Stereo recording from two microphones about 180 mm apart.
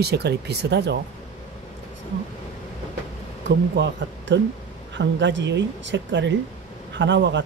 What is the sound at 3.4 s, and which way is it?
Speech, 75° right (ahead or behind).